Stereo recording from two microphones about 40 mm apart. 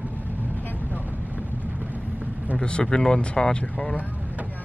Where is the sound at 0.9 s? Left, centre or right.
Right.